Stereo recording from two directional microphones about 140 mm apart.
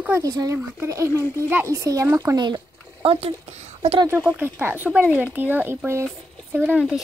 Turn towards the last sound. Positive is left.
turn(degrees=-10)  # may be behind; listen again after turning